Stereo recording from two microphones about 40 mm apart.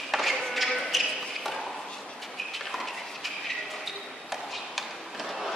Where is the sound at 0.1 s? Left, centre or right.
Centre.